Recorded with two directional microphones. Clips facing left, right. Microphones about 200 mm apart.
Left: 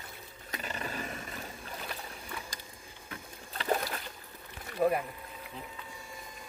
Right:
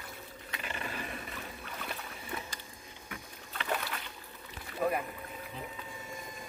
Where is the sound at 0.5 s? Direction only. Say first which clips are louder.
Left 2 dB; 40° left (ahead or behind).